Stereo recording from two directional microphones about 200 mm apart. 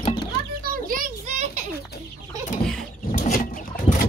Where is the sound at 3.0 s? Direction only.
45° left (ahead or behind).